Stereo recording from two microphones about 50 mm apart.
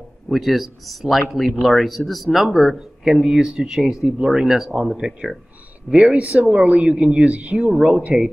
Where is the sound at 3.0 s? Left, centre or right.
Centre.